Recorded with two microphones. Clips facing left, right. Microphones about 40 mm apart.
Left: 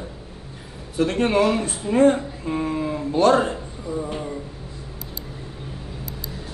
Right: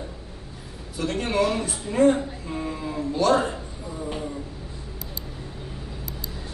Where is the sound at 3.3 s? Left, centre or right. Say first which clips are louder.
Left 2 dB; centre.